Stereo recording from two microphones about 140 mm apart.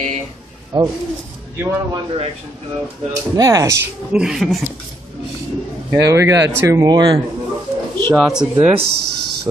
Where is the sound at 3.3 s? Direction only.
25° right (ahead or behind).